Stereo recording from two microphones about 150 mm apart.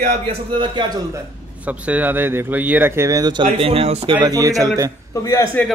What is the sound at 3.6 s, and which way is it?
Speech, 40° right (ahead or behind).